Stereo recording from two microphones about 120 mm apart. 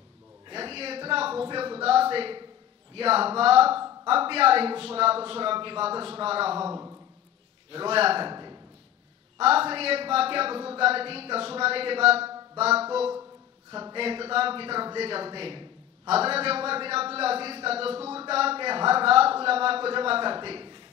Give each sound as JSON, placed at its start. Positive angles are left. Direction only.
{"t": 0.5, "sound": "a sound", "side_deg": -50}
{"t": 2.9, "sound": "a man's voice", "side_deg": -55}
{"t": 6.7, "sound": "speech", "side_deg": -25}
{"t": 7.7, "sound": "a man's voice", "side_deg": -55}
{"t": 9.4, "sound": "speech", "side_deg": -55}
{"t": 12.5, "sound": "a sound", "side_deg": -60}
{"t": 13.9, "sound": "a man's voice", "side_deg": -50}